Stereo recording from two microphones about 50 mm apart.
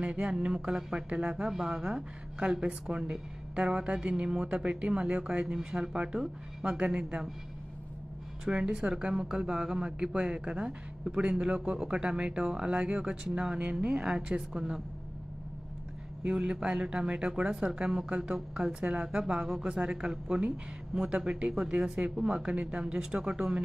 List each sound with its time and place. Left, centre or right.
0.0 s a woman's voice: right
8.5 s a woman's voice: centre
16.3 s a woman's voice: centre
19.4 s speech: centre
19.7 s a woman's voice: centre